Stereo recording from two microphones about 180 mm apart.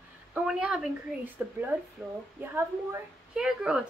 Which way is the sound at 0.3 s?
5° right (ahead or behind).